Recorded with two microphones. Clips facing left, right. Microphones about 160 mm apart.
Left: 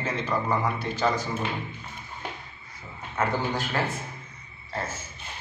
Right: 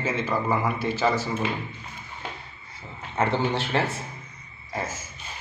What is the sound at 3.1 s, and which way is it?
Speech, 25° right (ahead or behind).